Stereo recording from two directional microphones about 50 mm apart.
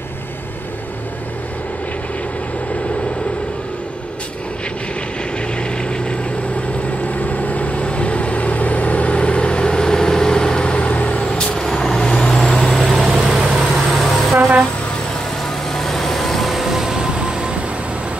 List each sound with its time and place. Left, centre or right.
7.2 s vehicle: left; by 14.4 s centre
15.7 s vehicle: centre